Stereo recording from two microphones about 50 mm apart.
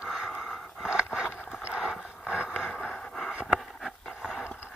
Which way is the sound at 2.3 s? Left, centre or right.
Centre.